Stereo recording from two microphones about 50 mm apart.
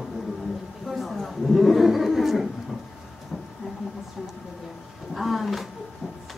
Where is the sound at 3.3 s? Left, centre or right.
Centre.